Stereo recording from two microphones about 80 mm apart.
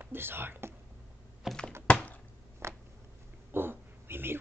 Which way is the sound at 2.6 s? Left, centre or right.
Right.